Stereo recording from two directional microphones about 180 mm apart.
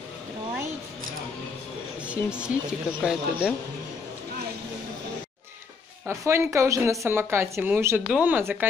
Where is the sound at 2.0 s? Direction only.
5° right (ahead or behind).